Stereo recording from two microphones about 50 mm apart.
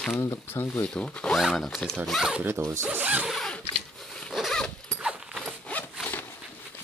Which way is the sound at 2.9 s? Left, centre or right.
Right.